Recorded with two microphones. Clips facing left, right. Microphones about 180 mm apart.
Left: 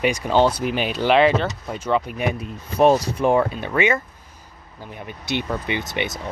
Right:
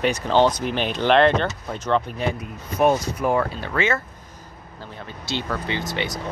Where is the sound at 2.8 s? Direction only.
30° left (ahead or behind).